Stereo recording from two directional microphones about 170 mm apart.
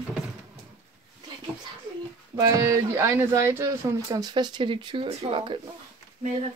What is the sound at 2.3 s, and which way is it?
Speech, 15° right (ahead or behind).